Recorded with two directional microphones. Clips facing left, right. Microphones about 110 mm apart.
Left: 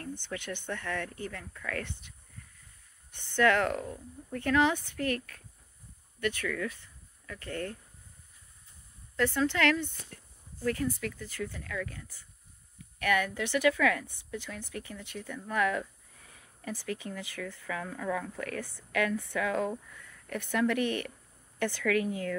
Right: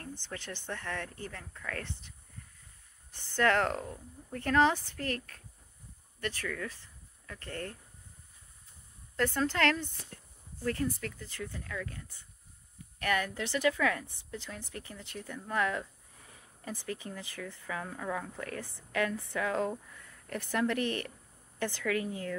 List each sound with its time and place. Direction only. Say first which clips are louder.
0.3 s speech: left 3 dB; 30° right (ahead or behind)
9.1 s speech: left 2 dB; 40° right (ahead or behind); by 22.0 s 25° right (ahead or behind)